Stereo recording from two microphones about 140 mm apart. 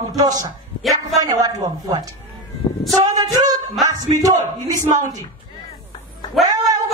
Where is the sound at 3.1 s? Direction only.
25° right (ahead or behind).